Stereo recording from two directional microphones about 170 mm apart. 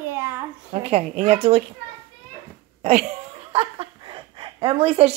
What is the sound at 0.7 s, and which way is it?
Speech, 35° right (ahead or behind).